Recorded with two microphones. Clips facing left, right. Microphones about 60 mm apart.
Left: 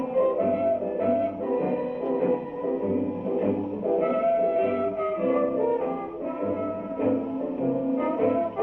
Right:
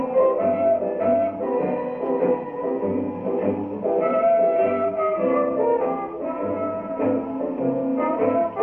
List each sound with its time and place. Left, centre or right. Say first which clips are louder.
0.1 s music: right 4 dB; right
0.9 s music: right 4 dB; right
4.7 s music: right 5 dB; right
7.6 s music: right 3 dB; right